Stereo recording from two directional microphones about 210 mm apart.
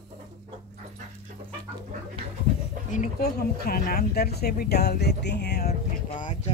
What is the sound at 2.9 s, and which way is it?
Speech, 45° left (ahead or behind).